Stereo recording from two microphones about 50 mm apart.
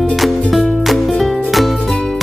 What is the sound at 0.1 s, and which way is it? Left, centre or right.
Music, centre.